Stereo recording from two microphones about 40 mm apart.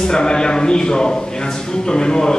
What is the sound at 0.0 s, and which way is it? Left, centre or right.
A man's voice, centre.